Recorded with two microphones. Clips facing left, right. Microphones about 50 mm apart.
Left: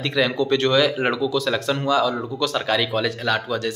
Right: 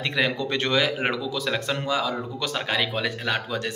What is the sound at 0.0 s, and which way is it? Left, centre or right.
Speech, right.